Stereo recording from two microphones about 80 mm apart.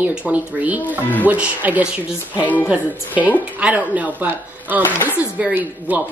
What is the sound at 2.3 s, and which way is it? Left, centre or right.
Speech, left.